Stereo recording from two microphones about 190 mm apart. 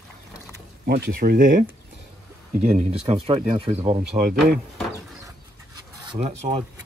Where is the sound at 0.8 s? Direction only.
55° right (ahead or behind).